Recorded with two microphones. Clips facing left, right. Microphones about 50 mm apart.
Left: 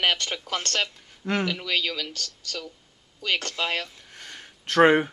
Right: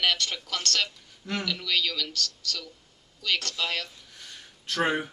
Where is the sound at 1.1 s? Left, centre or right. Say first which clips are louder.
Left 6 dB; left.